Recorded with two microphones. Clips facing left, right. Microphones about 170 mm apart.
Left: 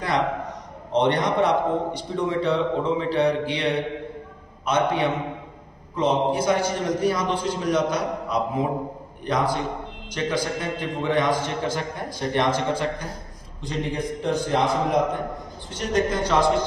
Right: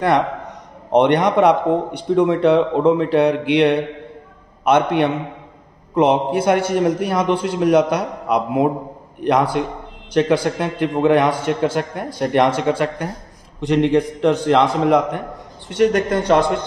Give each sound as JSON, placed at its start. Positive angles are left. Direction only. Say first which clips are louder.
{"t": 0.9, "sound": "a man's voice", "louder": "right 7 dB", "side_deg": -65}